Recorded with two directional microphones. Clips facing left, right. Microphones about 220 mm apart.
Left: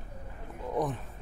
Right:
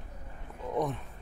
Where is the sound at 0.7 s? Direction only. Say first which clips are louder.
Even; centre (ahead or behind).